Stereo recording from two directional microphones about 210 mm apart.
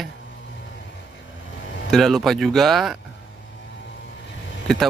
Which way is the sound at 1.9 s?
Centre (ahead or behind).